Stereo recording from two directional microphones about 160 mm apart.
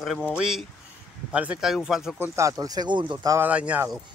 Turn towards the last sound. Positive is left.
turn(degrees=-10)  # may be behind; listen again after turning